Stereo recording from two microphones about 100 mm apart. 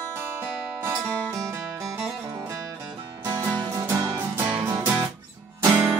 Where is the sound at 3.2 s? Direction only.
25° right (ahead or behind).